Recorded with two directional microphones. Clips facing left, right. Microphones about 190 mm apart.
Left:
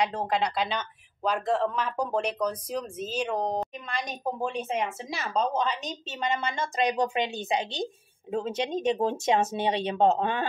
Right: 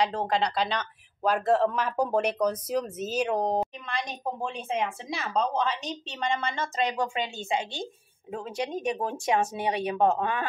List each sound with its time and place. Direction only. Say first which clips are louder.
0.2 s speech: right 1 dB; 5° left (ahead or behind); by 10.4 s 25° left (ahead or behind)